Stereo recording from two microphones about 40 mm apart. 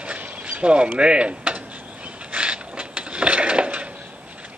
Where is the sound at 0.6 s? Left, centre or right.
Right.